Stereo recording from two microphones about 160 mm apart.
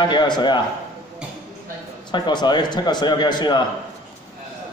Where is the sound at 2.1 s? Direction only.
25° left (ahead or behind).